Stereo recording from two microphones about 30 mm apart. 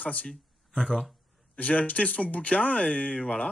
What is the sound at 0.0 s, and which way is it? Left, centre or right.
Speech, left.